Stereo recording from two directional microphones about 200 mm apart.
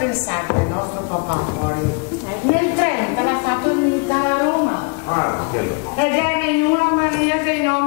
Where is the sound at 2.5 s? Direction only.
15° left (ahead or behind).